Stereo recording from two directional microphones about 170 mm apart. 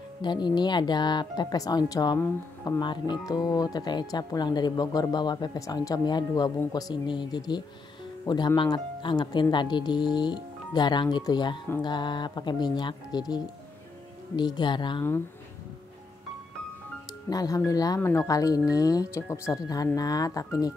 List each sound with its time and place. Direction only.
0.2 s speech: 25° left (ahead or behind)
17.3 s speech: 20° left (ahead or behind)